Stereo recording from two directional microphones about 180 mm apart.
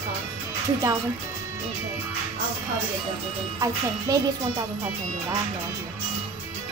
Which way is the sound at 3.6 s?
20° right (ahead or behind).